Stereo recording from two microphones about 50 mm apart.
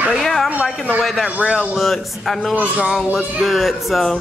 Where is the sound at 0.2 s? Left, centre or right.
Centre.